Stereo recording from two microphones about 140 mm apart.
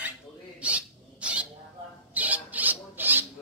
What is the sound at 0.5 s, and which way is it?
Rodents, 10° right (ahead or behind).